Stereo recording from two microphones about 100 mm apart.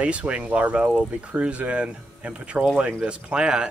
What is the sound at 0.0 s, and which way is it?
Speech, 10° right (ahead or behind).